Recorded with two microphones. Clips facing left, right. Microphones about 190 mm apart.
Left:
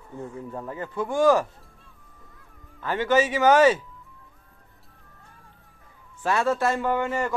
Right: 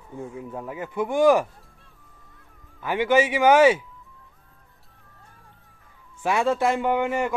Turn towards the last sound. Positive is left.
turn(degrees=-15)  # may be behind; listen again after turning